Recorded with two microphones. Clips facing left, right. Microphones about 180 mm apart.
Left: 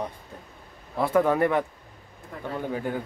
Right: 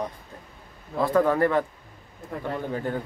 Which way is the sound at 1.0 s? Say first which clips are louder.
Right 1 dB; 15° left (ahead or behind).